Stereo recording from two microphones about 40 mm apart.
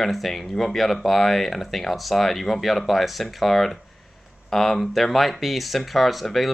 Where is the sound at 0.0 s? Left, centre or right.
Centre.